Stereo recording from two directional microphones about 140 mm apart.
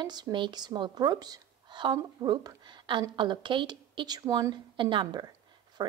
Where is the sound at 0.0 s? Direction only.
30° right (ahead or behind).